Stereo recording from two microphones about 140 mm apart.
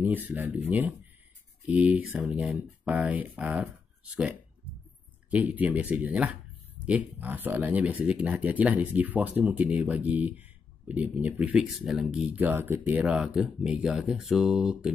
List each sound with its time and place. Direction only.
0.0 s speech: 10° right (ahead or behind)